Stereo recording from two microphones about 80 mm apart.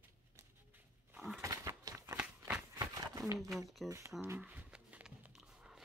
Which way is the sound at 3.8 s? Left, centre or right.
Right.